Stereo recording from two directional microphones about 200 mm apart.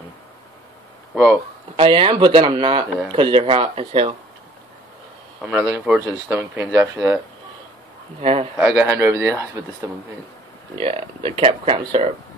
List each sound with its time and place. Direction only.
1.1 s speech: 5° right (ahead or behind)
1.8 s speech: 25° right (ahead or behind)
5.4 s speech: 10° right (ahead or behind)
8.2 s speech: 30° right (ahead or behind)
8.5 s speech: 10° right (ahead or behind)
10.8 s speech: 30° right (ahead or behind)